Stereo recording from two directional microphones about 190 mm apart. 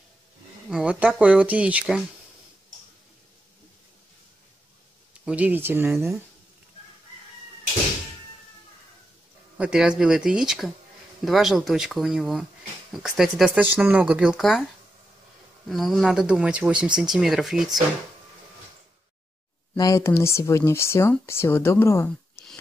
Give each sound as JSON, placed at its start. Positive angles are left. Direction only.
{"t": 0.7, "sound": "speech", "side_deg": -5}
{"t": 5.2, "sound": "speech", "side_deg": -10}
{"t": 9.6, "sound": "speech", "side_deg": -5}
{"t": 15.7, "sound": "speech", "side_deg": 0}
{"t": 19.8, "sound": "speech", "side_deg": 15}